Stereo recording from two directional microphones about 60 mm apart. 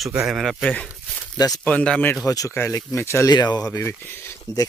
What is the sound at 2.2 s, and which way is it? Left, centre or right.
Speech, left.